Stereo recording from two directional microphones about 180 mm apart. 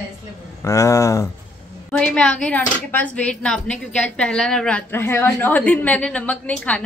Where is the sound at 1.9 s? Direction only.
5° left (ahead or behind).